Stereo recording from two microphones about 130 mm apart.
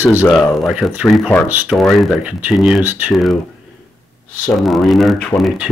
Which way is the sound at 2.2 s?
10° right (ahead or behind).